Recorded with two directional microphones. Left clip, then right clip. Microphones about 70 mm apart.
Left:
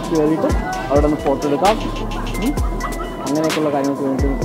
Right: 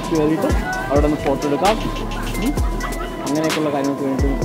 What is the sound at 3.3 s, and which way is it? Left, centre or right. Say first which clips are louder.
Speech: left 2 dB; centre.